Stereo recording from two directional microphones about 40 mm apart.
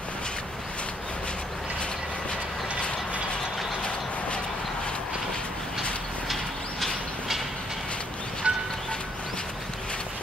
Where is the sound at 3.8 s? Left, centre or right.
Left.